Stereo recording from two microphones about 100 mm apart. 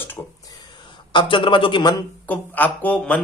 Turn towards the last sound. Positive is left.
turn(degrees=15)  # may be behind; listen again after turning